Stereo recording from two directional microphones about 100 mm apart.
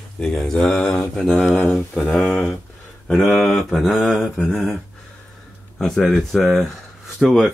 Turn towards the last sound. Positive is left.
turn(degrees=-5)  # may be behind; listen again after turning